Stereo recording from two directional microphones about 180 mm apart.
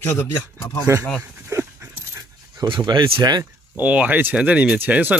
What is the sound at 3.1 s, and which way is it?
Speech, 20° right (ahead or behind).